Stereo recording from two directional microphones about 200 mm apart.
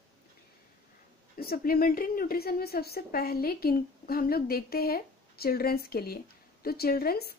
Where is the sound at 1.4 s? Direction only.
50° left (ahead or behind).